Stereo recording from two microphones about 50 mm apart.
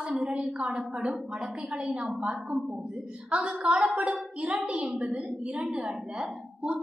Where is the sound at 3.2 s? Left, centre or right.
Right.